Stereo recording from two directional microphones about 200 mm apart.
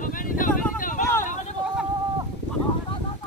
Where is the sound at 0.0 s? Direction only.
45° left (ahead or behind).